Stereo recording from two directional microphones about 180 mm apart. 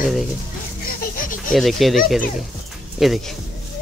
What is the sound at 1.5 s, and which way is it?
Speech, centre (ahead or behind).